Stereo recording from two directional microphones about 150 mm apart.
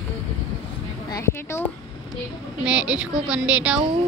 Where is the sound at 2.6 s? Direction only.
10° right (ahead or behind).